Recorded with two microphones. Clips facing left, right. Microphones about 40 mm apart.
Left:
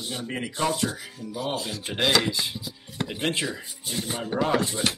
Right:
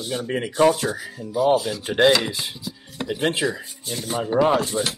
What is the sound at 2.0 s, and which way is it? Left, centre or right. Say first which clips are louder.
Speech: right 5 dB; centre.